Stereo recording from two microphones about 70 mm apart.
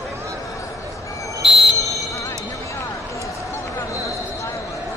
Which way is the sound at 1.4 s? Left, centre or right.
Centre.